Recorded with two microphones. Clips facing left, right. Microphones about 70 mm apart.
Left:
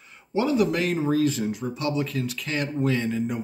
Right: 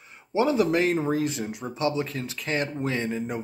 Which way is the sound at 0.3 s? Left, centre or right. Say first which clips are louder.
Even; right.